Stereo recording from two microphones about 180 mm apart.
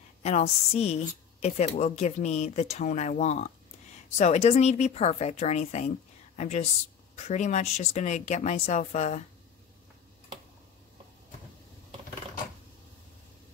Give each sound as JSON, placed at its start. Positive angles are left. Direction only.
{"t": 0.2, "sound": "a woman's voice", "side_deg": 35}